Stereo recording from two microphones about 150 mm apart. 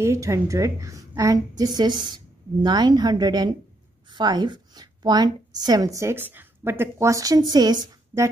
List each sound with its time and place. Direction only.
0.0 s a woman's voice: 20° right (ahead or behind)